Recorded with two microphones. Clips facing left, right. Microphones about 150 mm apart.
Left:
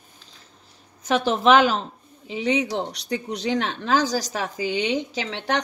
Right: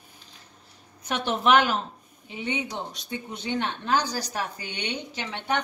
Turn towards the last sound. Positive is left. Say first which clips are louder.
# left 3 dB
turn(degrees=90)